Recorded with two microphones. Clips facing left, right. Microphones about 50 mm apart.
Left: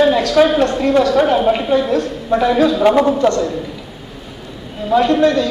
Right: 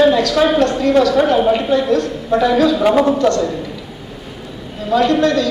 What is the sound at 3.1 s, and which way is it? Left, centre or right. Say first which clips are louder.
Speech: even; left.